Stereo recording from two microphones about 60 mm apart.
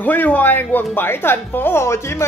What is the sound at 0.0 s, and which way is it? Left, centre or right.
Speech, left.